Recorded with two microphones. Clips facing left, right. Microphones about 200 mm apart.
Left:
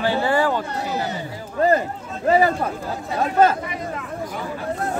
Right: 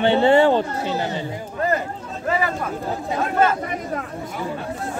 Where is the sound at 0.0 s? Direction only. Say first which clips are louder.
Right 5 dB; 25° right (ahead or behind).